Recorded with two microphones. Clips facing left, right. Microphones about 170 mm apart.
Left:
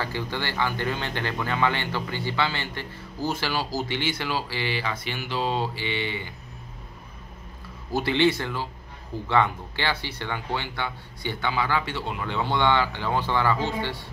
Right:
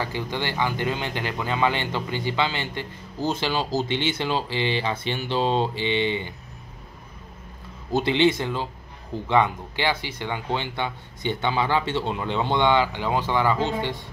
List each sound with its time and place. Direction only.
0.0 s a man's voice: 15° right (ahead or behind)
7.9 s a man's voice: 20° right (ahead or behind)